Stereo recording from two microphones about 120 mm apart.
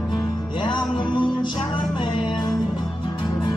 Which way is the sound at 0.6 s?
40° left (ahead or behind).